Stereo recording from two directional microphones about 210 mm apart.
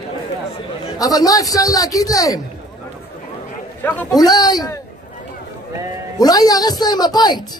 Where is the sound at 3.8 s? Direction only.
15° left (ahead or behind).